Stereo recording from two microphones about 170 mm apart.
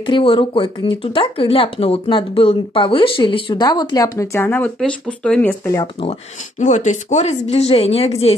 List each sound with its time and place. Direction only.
0.0 s speech: 30° left (ahead or behind); by 5.8 s 10° left (ahead or behind)
6.6 s speech: 45° left (ahead or behind)